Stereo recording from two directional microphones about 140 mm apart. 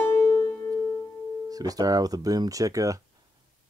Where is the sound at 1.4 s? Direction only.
25° right (ahead or behind).